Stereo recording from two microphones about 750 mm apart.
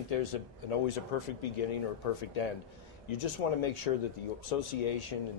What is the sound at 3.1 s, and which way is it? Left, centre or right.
Speech, left.